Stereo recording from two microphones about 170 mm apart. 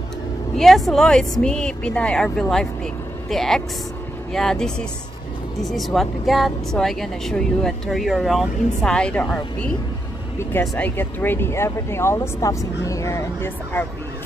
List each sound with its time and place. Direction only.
0.6 s speech: centre (ahead or behind)
11.0 s speech: 10° left (ahead or behind)